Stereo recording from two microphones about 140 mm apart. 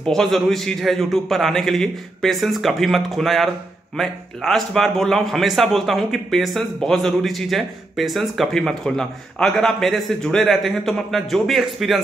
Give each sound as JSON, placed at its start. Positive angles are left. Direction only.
{"t": 0.0, "sound": "a man's voice", "side_deg": 0}